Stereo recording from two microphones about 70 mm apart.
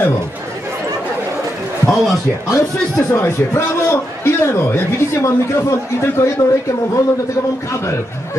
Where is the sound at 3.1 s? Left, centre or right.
Left.